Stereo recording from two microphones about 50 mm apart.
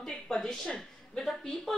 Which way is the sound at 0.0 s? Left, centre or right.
Centre.